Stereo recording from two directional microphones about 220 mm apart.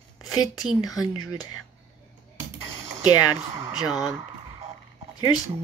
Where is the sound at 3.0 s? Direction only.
15° left (ahead or behind).